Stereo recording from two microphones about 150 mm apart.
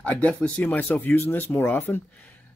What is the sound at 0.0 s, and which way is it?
Speech, 10° left (ahead or behind).